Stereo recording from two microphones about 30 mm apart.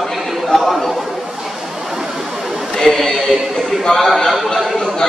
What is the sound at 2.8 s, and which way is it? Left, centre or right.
A man's voice, centre.